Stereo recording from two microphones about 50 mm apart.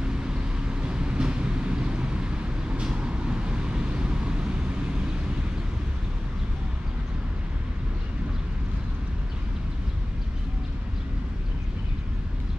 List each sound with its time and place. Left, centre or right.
0.8 s vehicle: centre